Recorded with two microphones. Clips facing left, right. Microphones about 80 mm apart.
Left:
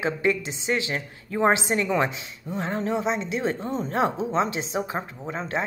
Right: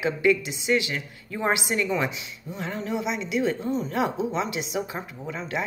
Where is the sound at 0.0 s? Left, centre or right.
Left.